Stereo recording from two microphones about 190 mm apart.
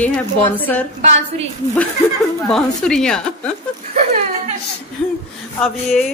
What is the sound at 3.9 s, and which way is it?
Speech, 40° right (ahead or behind).